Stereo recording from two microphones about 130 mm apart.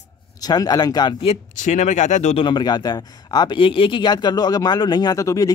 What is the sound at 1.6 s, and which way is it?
Speech, 70° left (ahead or behind).